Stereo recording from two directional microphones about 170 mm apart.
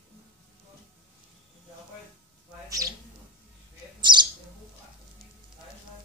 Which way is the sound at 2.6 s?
20° right (ahead or behind).